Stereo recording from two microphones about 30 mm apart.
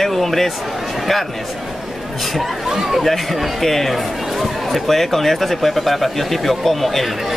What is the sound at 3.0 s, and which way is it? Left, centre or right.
Speech, centre.